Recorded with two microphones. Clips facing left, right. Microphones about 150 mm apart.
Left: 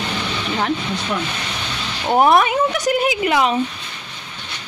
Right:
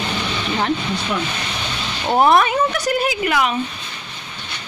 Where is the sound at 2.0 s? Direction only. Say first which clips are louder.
Even; 10° left (ahead or behind).